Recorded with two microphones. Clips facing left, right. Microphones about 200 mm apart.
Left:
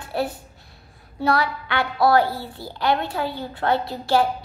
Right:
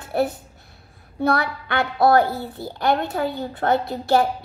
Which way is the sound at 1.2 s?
55° right (ahead or behind).